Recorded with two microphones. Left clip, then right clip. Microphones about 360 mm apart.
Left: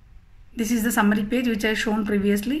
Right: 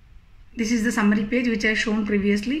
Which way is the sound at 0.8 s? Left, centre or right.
Left.